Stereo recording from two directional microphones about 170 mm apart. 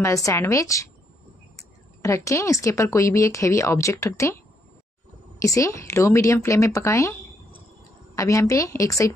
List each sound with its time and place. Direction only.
0.0 s a woman's voice: 20° left (ahead or behind)
2.0 s a woman's voice: 20° left (ahead or behind)
5.4 s a woman's voice: 20° left (ahead or behind)
8.2 s a woman's voice: 20° left (ahead or behind)